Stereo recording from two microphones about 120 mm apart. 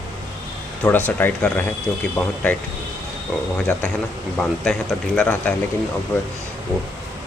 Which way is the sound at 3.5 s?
10° left (ahead or behind).